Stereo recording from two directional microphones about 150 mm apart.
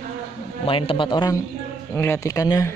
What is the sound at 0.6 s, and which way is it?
Speech, 40° left (ahead or behind).